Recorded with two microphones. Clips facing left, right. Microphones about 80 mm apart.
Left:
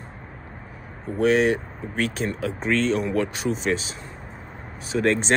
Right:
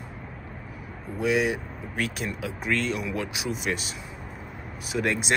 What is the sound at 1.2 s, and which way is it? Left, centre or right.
Speech, left.